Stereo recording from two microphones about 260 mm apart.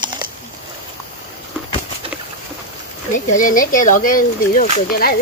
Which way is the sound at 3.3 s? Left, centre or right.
Left.